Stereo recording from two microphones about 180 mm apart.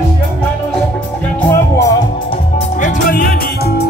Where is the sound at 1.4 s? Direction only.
15° left (ahead or behind).